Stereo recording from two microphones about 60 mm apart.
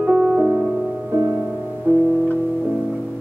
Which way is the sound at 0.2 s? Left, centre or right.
Right.